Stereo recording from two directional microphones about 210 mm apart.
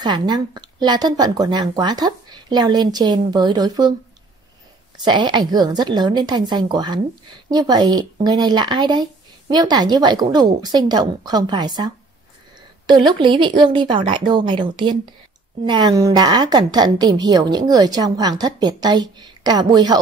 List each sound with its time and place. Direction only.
0.0 s a woman's voice: 20° right (ahead or behind)
4.9 s a woman's voice: 20° right (ahead or behind)